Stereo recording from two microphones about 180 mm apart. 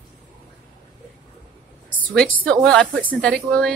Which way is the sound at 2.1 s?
5° left (ahead or behind).